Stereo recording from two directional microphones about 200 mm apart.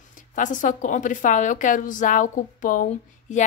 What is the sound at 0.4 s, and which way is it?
A woman's voice, 40° left (ahead or behind).